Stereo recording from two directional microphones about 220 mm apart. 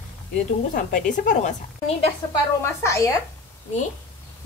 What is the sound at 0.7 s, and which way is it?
Speech, 35° left (ahead or behind).